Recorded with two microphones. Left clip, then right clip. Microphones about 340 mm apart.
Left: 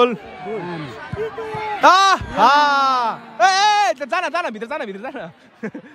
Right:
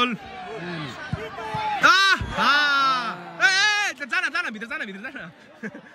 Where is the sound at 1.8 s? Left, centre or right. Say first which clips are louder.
Left 5 dB; centre.